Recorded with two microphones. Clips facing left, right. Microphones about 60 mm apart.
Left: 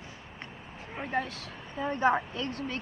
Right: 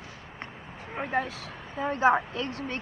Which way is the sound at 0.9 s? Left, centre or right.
Centre.